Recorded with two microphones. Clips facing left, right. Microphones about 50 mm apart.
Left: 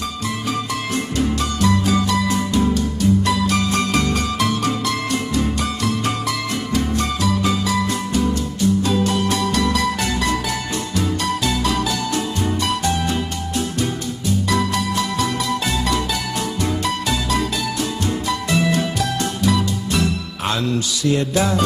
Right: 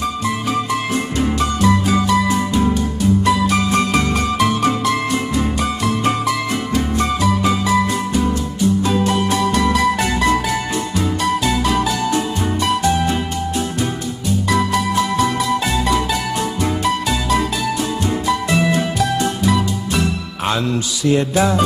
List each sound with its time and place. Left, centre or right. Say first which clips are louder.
1.1 s music: right 2 dB; right
6.0 s music: right 4 dB; centre
11.4 s music: right 3 dB; right
14.5 s music: right 5 dB; centre
18.2 s music: right 3 dB; centre